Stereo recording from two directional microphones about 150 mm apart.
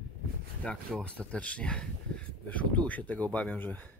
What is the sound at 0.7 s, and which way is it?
Speech, 5° left (ahead or behind).